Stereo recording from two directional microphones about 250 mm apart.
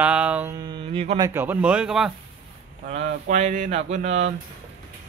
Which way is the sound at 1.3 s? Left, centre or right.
Centre.